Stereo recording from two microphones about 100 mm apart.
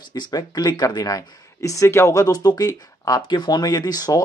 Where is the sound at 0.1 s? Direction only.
45° left (ahead or behind).